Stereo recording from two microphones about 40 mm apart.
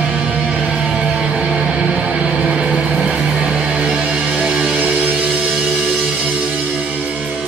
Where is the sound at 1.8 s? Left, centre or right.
Right.